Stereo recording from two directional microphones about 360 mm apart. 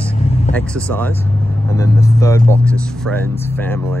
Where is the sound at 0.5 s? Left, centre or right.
Centre.